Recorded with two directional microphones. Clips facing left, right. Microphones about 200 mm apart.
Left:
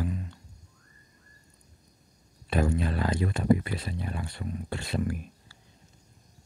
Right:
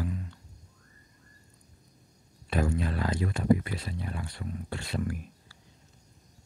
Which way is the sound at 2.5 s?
25° left (ahead or behind).